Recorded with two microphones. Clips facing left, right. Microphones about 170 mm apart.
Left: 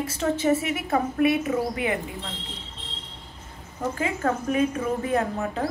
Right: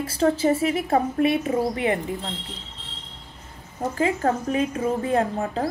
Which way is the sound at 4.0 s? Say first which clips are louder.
Right 5 dB; 35° right (ahead or behind).